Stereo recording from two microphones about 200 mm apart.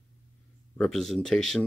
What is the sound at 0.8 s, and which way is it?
Speech, centre (ahead or behind).